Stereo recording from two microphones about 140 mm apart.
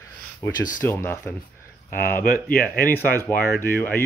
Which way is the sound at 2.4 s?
90° left.